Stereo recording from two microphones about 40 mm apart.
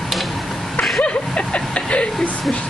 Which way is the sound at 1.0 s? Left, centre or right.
Left.